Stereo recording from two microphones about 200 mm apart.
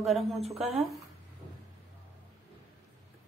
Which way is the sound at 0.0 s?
Centre (ahead or behind).